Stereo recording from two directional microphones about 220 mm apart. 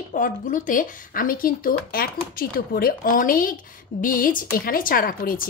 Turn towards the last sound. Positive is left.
turn(degrees=40)  # may be behind; listen again after turning